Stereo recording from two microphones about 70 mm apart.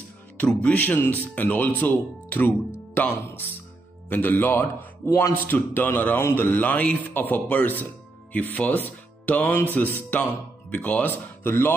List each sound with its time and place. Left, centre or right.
0.7 s a man's voice: left